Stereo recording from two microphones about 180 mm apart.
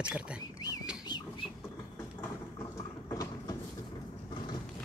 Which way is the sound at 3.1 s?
20° left (ahead or behind).